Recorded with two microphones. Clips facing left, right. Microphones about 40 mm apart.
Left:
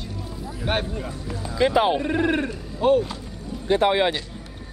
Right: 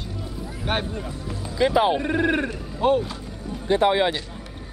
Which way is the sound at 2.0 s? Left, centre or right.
Centre.